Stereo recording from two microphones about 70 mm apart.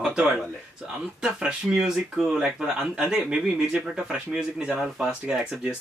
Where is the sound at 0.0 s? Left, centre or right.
Centre.